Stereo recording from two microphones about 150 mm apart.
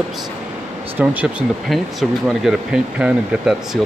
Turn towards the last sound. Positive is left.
turn(degrees=-5)  # may be behind; listen again after turning